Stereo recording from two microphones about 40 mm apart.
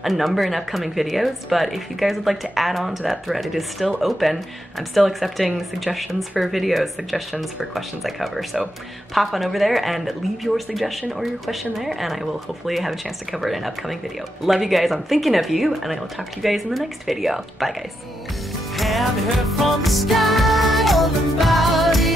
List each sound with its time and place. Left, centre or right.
0.0 s speech: centre
18.8 s music: centre